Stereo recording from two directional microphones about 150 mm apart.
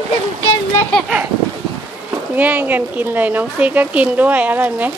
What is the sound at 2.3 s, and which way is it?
Speech, 10° right (ahead or behind).